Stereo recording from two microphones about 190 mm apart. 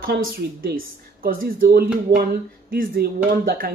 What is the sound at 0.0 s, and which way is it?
Speech, 50° right (ahead or behind).